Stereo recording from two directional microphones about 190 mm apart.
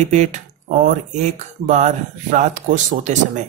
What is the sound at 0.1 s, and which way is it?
Speech, 40° right (ahead or behind).